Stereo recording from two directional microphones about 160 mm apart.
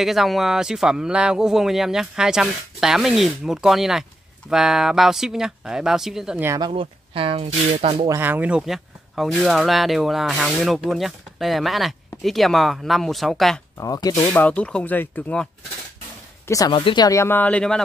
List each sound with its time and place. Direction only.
0.0 s speech: centre (ahead or behind)
6.4 s speech: 20° right (ahead or behind)
6.7 s speech: 35° right (ahead or behind)
8.1 s speech: 10° right (ahead or behind)
13.7 s speech: 20° left (ahead or behind)
14.3 s speech: 10° left (ahead or behind)
16.4 s speech: 20° left (ahead or behind); by 17.8 s 5° left (ahead or behind)